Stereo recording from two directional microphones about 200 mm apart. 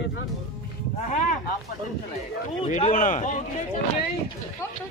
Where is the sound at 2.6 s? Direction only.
35° left (ahead or behind).